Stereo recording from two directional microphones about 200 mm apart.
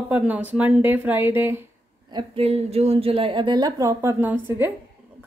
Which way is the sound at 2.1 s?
25° right (ahead or behind).